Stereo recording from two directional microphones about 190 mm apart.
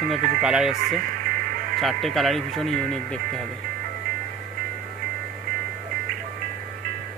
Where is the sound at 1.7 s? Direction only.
Centre (ahead or behind).